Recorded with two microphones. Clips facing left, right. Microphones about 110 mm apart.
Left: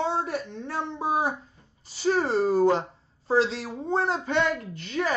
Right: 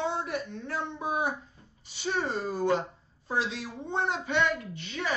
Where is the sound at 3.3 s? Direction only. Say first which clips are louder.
Left 8 dB; 90° left.